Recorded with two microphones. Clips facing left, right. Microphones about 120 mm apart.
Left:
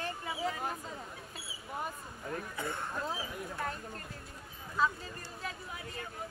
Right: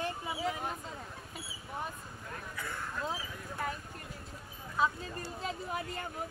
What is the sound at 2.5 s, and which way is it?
Speech, 25° left (ahead or behind).